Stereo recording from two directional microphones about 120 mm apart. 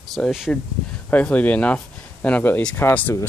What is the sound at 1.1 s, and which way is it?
Speech, 10° left (ahead or behind).